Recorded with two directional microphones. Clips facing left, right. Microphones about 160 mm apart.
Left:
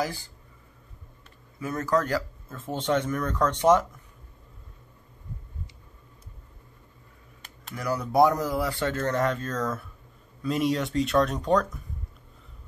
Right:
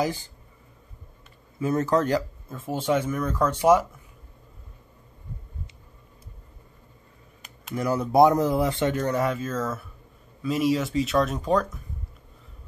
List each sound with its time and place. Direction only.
0.0 s speech: 20° right (ahead or behind)
1.6 s speech: 25° right (ahead or behind); by 3.8 s 10° right (ahead or behind)
7.7 s speech: 25° right (ahead or behind); by 11.8 s centre (ahead or behind)